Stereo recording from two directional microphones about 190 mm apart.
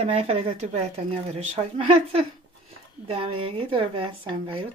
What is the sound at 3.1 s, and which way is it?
Speech, 30° right (ahead or behind).